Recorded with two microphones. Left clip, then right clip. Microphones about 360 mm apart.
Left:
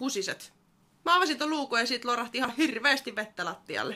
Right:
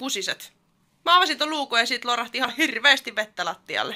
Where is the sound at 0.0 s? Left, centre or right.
Centre.